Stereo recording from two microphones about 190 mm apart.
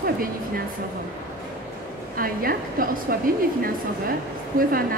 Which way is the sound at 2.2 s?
50° right (ahead or behind).